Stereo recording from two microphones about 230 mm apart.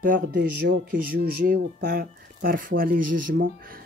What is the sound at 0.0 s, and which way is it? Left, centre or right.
Speech, right.